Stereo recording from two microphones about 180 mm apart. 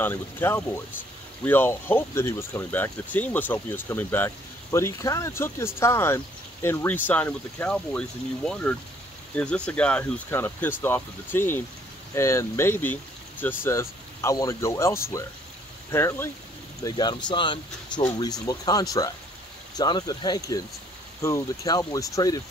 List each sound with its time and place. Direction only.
0.0 s speech: 10° left (ahead or behind)
16.8 s speech: 25° left (ahead or behind)